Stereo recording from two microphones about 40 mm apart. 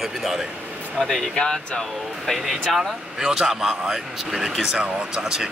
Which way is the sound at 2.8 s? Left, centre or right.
Centre.